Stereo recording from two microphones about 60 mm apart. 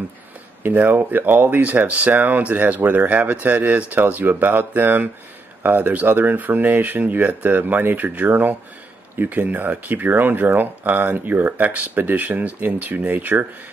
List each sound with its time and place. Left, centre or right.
0.7 s speech: right